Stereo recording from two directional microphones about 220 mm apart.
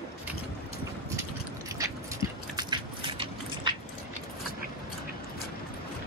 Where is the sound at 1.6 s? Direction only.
15° right (ahead or behind).